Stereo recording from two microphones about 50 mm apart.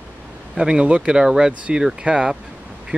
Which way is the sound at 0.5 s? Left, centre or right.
Centre.